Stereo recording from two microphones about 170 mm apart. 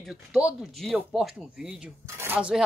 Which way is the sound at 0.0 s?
5° right (ahead or behind).